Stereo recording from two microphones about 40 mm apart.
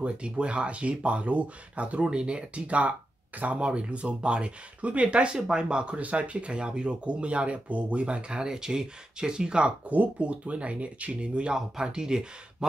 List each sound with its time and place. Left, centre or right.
0.0 s speech: right
2.0 s speech: right
5.9 s speech: right
11.5 s speech: centre